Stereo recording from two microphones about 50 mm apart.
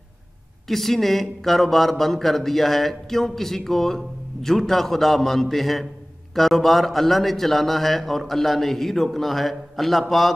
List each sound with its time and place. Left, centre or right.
0.7 s speech: centre